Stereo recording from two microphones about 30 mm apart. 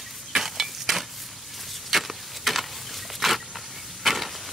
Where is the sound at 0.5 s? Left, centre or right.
Centre.